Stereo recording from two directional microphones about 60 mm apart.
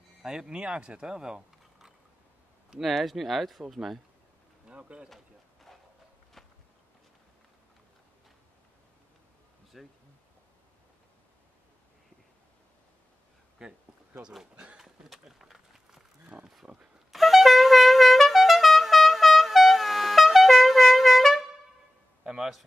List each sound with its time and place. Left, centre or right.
0.2 s speech: centre
4.6 s speech: centre
5.1 s a sound: centre
6.4 s walk: centre
9.7 s speech: centre
13.6 s speech: centre
14.5 s a sound: centre
14.8 s a sound: centre
17.1 s music: centre
22.2 s a man's voice: centre